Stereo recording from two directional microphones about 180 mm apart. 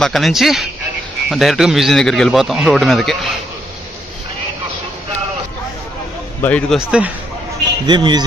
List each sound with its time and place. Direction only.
0.0 s a man's voice: centre (ahead or behind)
6.4 s speech: 5° left (ahead or behind)
6.8 s a man's voice: 5° right (ahead or behind)
7.8 s a man's voice: 25° right (ahead or behind)